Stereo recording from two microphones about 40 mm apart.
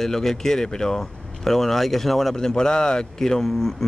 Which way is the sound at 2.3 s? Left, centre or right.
Centre.